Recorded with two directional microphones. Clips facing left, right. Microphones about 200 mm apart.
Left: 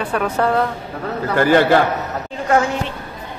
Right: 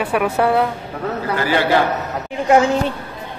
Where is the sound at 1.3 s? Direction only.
50° left (ahead or behind).